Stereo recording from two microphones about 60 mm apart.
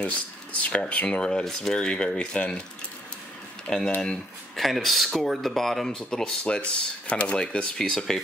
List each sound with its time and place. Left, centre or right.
0.0 s speech: left
3.7 s speech: centre
4.6 s speech: centre